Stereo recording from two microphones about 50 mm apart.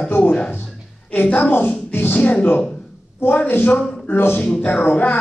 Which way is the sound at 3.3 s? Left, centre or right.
Left.